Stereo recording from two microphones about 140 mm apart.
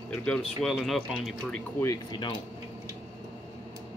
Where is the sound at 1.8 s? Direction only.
25° left (ahead or behind).